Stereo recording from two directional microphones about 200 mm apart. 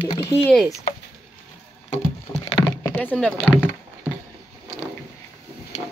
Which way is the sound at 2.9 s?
5° left (ahead or behind).